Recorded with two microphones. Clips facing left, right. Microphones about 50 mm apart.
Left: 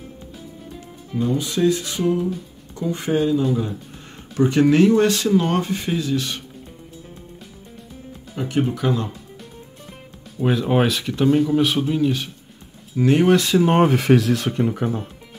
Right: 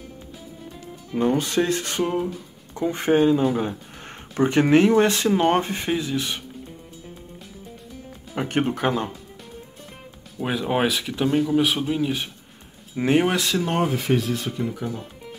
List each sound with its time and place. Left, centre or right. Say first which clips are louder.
1.1 s speech: right 2 dB; right; by 6.4 s centre
8.4 s speech: left 1 dB; right
10.4 s speech: left 4 dB; centre
12.9 s speech: left 2 dB; right
13.2 s speech: left 6 dB; centre
13.8 s speech: left 6 dB; left
14.6 s speech: left 6 dB; left